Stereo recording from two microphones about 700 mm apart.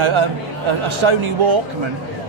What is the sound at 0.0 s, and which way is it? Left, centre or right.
A man's voice, right.